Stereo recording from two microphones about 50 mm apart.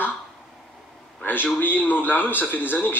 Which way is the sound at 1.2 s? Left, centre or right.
Left.